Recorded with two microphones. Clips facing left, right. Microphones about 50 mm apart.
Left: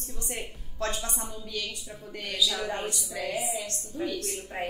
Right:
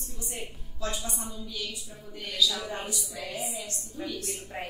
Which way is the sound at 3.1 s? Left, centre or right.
Left.